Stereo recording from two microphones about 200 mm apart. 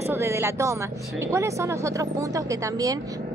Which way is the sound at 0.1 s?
10° right (ahead or behind).